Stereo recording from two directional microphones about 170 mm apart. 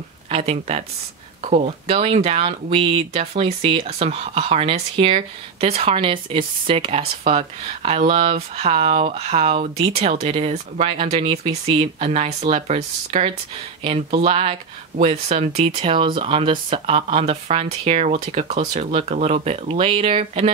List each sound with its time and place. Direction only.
0.3 s speech: 40° right (ahead or behind)